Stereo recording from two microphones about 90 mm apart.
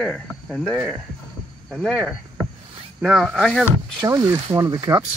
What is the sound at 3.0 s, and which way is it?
Speech, 5° right (ahead or behind).